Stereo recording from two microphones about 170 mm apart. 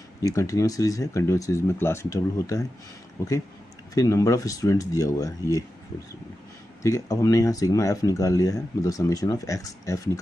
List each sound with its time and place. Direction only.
0.2 s speech: 20° left (ahead or behind)
3.9 s speech: 20° left (ahead or behind)
6.8 s speech: 20° left (ahead or behind)